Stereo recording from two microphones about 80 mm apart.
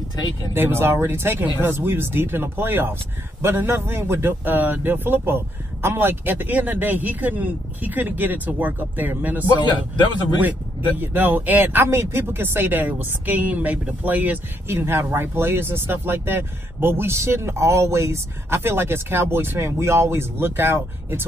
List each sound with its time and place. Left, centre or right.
0.6 s speech: right
9.7 s speech: left
11.0 s speech: right